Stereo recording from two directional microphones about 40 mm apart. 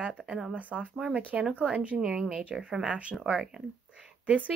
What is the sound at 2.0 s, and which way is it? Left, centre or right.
Speech, centre.